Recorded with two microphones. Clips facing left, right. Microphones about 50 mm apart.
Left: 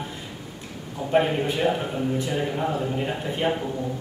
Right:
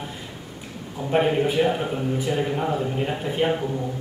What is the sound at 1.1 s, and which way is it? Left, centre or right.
A man's voice, centre.